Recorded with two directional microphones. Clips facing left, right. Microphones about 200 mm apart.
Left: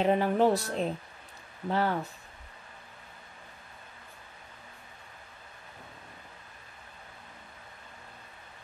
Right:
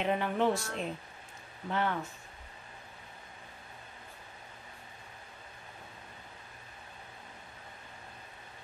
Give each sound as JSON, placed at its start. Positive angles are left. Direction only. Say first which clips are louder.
{"t": 0.0, "sound": "speech", "louder": "left 5 dB", "side_deg": 35}